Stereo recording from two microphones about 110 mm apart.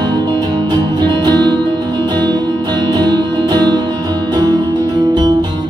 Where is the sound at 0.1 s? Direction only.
45° right (ahead or behind).